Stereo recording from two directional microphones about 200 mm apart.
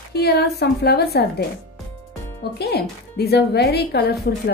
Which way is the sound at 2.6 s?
55° left (ahead or behind).